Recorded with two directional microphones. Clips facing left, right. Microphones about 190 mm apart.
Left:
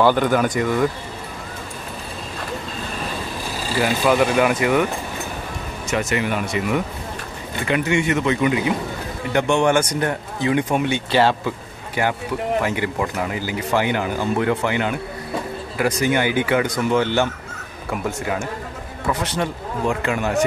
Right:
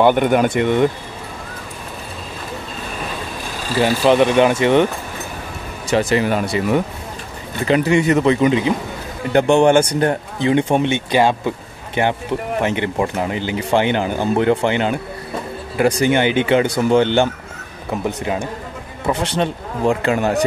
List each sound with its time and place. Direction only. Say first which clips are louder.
0.0 s speech: right 3 dB; 20° right (ahead or behind)
3.8 s speech: right 4 dB; 25° right (ahead or behind)
5.9 s speech: right 6 dB; 30° right (ahead or behind)